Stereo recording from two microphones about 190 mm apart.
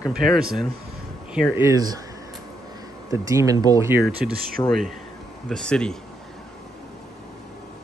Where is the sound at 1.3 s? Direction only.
10° right (ahead or behind).